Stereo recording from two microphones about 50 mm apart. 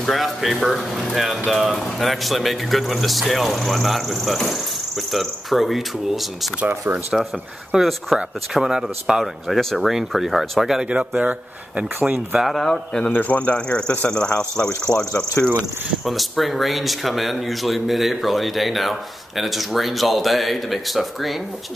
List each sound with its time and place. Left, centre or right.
0.0 s speech: centre
7.8 s speech: centre
8.6 s speech: centre
10.8 s speech: right
12.4 s speech: centre
12.6 s a man's voice: centre
13.1 s speech: left
14.9 s cricket: left
16.1 s speech: centre